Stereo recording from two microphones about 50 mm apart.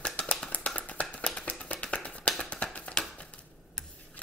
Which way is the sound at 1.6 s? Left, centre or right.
Left.